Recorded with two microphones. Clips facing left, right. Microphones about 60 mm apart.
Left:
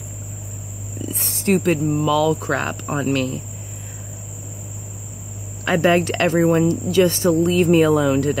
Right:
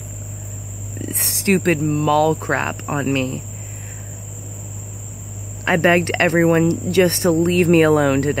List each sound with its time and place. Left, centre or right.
0.9 s speech: right
5.7 s speech: right